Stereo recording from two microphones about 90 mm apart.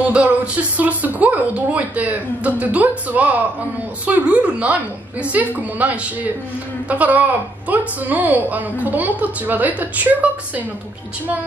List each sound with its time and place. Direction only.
0.0 s a woman's voice: 15° right (ahead or behind)